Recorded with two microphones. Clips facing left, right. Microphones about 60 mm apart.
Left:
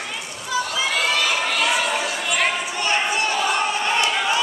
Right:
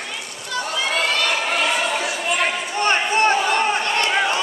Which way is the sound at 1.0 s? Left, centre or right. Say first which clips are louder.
Even; centre.